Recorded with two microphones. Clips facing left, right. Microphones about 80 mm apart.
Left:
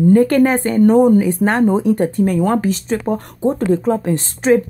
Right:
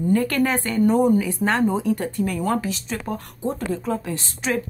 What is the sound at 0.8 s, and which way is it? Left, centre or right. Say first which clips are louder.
Speech: left 7 dB; left.